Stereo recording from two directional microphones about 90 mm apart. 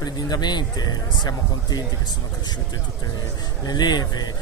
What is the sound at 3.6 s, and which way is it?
Speech, 50° left (ahead or behind).